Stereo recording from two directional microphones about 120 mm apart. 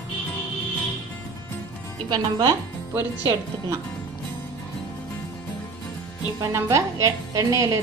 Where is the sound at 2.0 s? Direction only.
35° right (ahead or behind).